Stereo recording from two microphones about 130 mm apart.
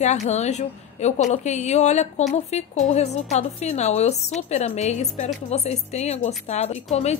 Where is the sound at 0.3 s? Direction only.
60° left (ahead or behind).